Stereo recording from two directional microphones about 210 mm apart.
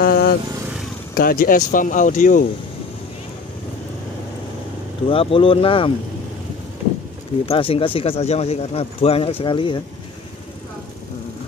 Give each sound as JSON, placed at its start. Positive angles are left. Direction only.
{"t": 0.0, "sound": "vehicle", "side_deg": 45}
{"t": 1.1, "sound": "speech", "side_deg": 45}
{"t": 5.0, "sound": "speech", "side_deg": 25}
{"t": 7.4, "sound": "speech", "side_deg": 25}